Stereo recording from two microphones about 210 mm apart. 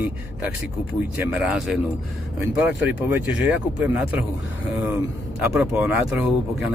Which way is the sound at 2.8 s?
10° right (ahead or behind).